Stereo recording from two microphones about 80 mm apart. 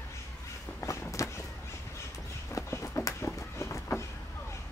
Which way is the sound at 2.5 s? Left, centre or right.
Left.